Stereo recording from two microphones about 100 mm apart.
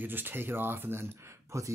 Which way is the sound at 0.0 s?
20° right (ahead or behind).